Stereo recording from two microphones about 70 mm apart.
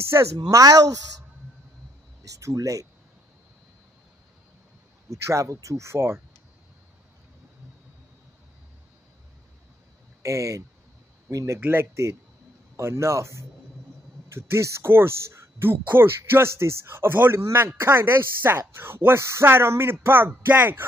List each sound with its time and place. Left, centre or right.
0.0 s speech: right
0.5 s speech: right
2.2 s speech: right
5.1 s speech: right
10.2 s speech: right